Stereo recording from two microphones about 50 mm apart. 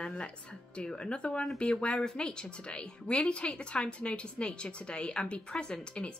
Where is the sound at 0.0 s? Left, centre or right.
Left.